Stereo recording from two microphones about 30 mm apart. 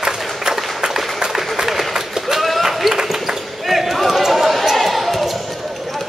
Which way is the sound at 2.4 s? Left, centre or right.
Centre.